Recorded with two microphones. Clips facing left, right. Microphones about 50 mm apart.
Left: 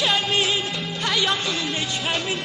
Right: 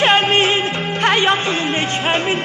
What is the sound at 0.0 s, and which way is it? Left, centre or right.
Music, right.